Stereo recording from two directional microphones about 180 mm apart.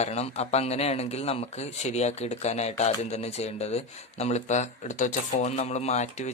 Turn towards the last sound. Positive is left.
turn(degrees=40)  # may be behind; listen again after turning